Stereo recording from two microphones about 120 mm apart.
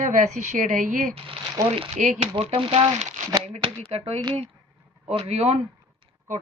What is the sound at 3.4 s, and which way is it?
Speech, 65° right (ahead or behind).